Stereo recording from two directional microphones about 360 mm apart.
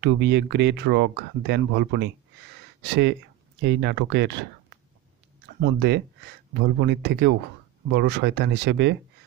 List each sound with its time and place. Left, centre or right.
0.0 s speech: right